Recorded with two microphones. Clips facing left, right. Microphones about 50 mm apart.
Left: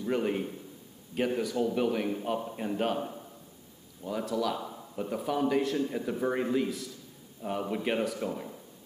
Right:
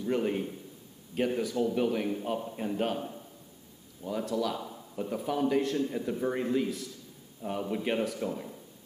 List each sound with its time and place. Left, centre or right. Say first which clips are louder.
0.0 s a man's voice: even; centre
3.0 s a man's voice: left 2 dB; centre
4.0 s a man's voice: even; centre
4.6 s a sound: left 1 dB; centre
5.0 s a man's voice: even; centre